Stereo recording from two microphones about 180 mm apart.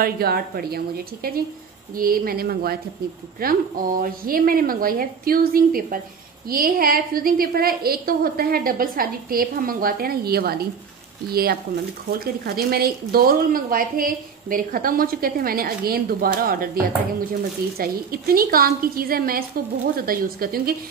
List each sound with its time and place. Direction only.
0.0 s a woman's voice: 55° right (ahead or behind)
17.7 s a woman's voice: 55° right (ahead or behind)